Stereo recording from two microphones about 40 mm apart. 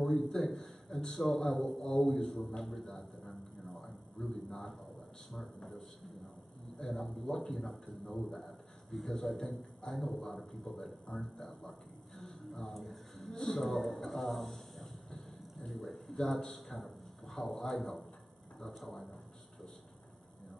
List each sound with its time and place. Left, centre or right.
0.0 s a man's voice: centre
2.6 s a sound: centre
5.3 s a man's voice: centre
11.1 s a man's voice: left
12.2 s a sound: centre
15.7 s a man's voice: centre